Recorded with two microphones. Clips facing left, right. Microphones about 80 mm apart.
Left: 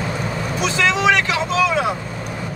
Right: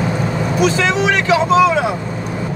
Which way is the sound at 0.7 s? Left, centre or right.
Right.